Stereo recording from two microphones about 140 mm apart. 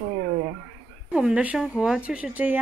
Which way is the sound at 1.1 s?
5° right (ahead or behind).